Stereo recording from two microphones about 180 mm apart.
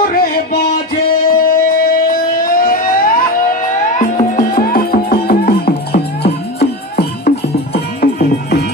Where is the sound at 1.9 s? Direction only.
50° left (ahead or behind).